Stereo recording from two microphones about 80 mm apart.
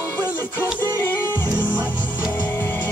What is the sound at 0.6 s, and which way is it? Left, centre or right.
Music, left.